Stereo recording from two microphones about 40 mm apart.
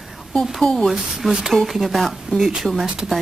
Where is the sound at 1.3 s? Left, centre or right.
Centre.